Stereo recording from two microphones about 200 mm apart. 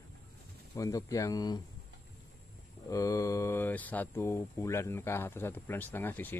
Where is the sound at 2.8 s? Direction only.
15° left (ahead or behind).